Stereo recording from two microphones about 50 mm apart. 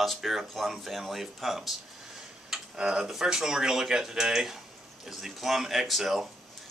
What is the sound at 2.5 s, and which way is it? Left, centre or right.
Tick-tock, centre.